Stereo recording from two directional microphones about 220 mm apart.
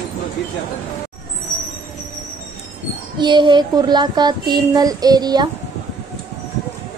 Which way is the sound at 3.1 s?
20° right (ahead or behind).